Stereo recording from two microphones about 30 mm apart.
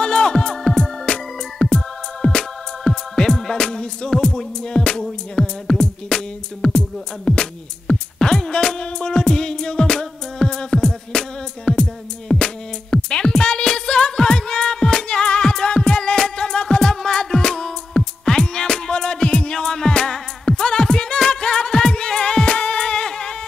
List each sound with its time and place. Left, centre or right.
0.0 s music: left
3.5 s music: left
16.0 s music: left
22.4 s music: left
22.7 s music: left